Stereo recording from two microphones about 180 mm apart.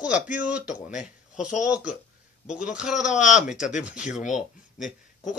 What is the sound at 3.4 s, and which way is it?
Speech, 45° left (ahead or behind).